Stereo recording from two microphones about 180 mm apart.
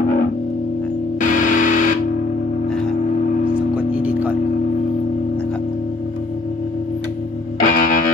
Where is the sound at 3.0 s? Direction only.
45° left (ahead or behind).